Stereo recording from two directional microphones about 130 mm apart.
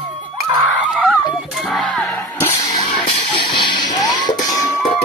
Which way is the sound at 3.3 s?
35° left (ahead or behind).